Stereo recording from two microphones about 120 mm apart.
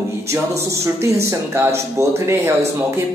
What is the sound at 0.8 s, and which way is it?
Speech, 25° right (ahead or behind).